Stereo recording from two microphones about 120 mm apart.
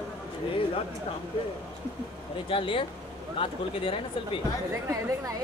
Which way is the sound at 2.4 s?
45° left (ahead or behind).